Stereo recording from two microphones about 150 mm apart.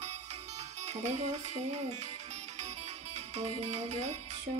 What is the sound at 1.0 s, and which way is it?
Music, 45° right (ahead or behind).